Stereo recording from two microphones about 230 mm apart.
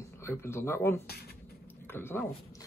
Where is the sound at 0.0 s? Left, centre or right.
Centre.